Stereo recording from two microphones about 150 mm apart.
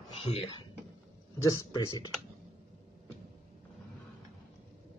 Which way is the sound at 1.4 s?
25° left (ahead or behind).